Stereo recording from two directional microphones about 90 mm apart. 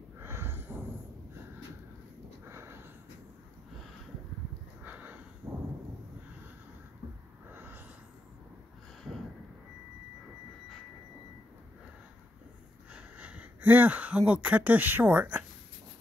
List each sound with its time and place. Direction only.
0.2 s snort: 25° right (ahead or behind)
2.4 s sniff: 30° right (ahead or behind)
4.8 s sniff: 20° right (ahead or behind)
5.4 s a sound: 30° right (ahead or behind)
7.5 s a sound: 20° right (ahead or behind)
12.9 s speech: 15° right (ahead or behind)